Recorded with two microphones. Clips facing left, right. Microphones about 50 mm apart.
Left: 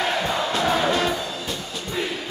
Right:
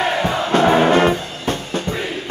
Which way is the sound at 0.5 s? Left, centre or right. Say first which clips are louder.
Right 10 dB; right.